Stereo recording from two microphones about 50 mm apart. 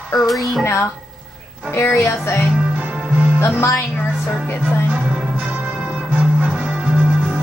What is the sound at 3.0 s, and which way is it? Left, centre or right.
Music, right.